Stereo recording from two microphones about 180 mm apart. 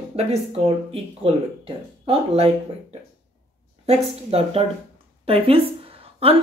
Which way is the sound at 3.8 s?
35° right (ahead or behind).